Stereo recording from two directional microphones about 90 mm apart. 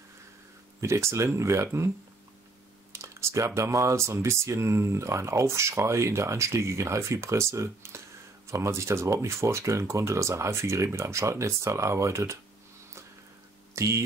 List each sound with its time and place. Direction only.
0.7 s speech: 30° right (ahead or behind)
2.9 s speech: 30° right (ahead or behind)
13.7 s speech: 35° right (ahead or behind)